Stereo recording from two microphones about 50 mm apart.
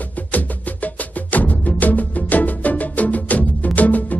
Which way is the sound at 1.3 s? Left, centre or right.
Left.